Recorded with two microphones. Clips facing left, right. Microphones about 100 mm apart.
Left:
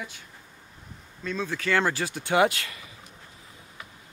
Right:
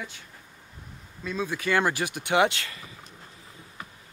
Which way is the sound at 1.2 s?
10° right (ahead or behind).